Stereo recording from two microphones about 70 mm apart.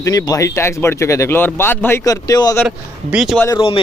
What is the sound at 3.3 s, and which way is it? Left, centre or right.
Speech, centre.